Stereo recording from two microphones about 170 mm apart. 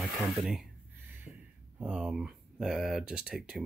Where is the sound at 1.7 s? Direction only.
5° right (ahead or behind).